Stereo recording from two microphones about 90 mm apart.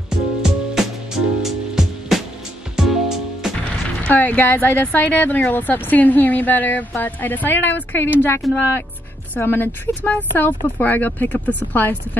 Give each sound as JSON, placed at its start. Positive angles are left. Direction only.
{"t": 0.4, "sound": "music", "side_deg": -5}
{"t": 4.0, "sound": "speech", "side_deg": 20}